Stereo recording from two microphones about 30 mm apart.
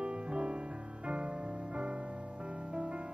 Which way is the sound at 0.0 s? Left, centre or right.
Right.